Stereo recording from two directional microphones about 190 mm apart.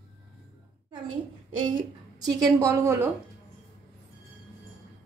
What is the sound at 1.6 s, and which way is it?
A woman's voice, 20° right (ahead or behind).